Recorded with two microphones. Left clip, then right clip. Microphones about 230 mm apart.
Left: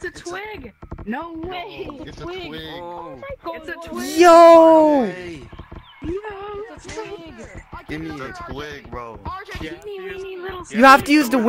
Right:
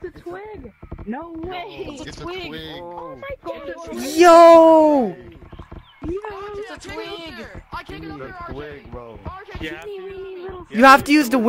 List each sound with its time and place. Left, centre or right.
0.0 s a sound: left
1.4 s speech: centre
2.2 s speech: centre
3.9 s speech: centre
6.1 s a sound: centre
8.5 s speech: left
9.2 s speech: left
10.2 s a sound: left
10.8 s speech: centre